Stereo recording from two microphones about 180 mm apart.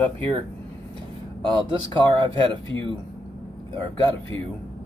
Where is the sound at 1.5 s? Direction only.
25° right (ahead or behind).